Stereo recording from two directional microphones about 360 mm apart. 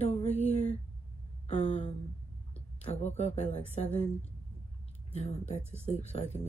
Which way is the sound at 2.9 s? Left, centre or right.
Centre.